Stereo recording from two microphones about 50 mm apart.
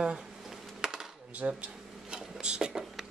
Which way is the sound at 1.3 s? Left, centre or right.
Right.